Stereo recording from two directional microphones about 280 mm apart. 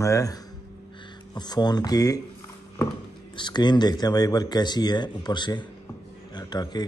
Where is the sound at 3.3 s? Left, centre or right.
Centre.